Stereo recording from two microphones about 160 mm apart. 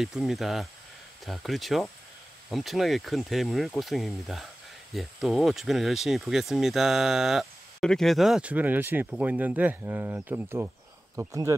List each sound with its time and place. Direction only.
0.0 s speech: centre (ahead or behind); by 11.5 s 20° right (ahead or behind)